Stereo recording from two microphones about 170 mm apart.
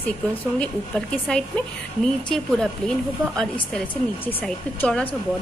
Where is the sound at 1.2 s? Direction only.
5° left (ahead or behind).